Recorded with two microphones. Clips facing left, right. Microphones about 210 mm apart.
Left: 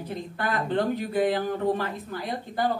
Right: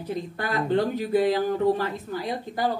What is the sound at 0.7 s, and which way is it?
Speech, 50° left (ahead or behind).